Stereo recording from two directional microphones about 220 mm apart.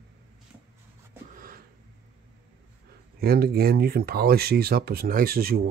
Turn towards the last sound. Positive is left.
turn(degrees=-45)  # may be behind; listen again after turning